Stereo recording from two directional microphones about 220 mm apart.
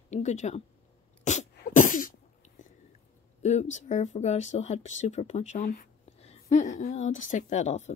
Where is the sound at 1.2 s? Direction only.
35° left (ahead or behind).